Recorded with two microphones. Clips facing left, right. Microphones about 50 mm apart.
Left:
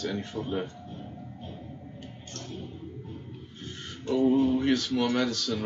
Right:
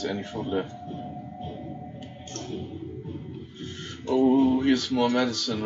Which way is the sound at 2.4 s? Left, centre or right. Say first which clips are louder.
Right 5 dB; centre.